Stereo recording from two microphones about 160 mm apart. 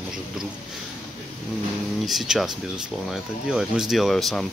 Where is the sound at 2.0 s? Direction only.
Centre (ahead or behind).